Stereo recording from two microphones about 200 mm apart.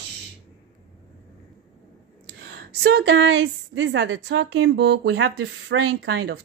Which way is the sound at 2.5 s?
55° right (ahead or behind).